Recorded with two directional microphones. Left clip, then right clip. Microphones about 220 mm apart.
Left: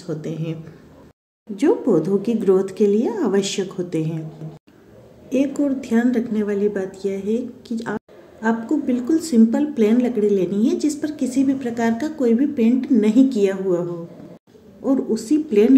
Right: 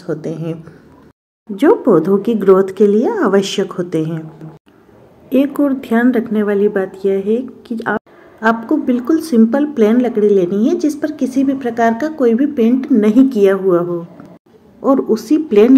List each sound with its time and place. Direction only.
0.0 s speech: 15° right (ahead or behind)
5.3 s speech: 15° right (ahead or behind)
14.9 s speech: 10° right (ahead or behind)